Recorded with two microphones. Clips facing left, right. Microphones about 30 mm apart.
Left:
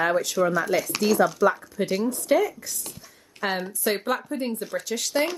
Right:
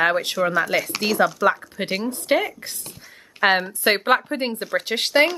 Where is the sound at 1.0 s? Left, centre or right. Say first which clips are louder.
Even; right.